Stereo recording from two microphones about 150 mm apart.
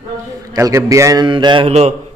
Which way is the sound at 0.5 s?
20° right (ahead or behind).